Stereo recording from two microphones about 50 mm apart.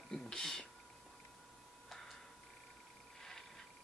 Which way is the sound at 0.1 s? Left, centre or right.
Centre.